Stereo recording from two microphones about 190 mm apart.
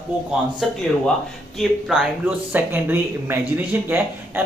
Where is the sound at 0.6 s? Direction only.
Centre (ahead or behind).